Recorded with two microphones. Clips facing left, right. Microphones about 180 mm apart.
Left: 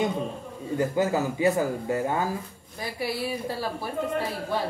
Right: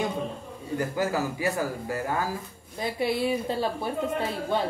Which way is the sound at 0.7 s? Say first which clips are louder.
Left 3 dB; 20° left (ahead or behind).